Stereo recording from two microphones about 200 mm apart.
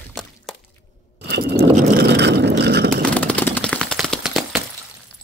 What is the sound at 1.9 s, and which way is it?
Vehicle, 55° right (ahead or behind).